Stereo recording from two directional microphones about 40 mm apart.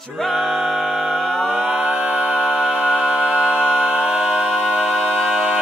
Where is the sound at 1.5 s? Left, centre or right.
Right.